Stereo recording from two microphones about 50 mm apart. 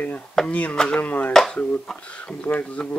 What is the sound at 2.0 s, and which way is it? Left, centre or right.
Speech, left.